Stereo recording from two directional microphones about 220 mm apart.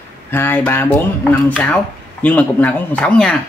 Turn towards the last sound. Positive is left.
turn(degrees=5)  # may be behind; listen again after turning